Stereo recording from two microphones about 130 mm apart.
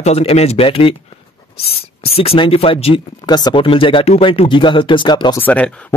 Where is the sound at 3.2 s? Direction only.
35° left (ahead or behind).